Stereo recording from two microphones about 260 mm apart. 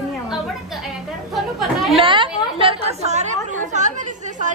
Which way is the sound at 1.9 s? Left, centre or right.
Centre.